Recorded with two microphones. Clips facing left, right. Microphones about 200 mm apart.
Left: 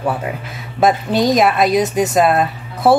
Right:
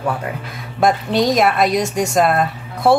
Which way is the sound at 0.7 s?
Centre (ahead or behind).